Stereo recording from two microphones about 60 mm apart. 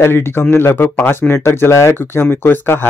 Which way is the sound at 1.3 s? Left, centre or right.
Left.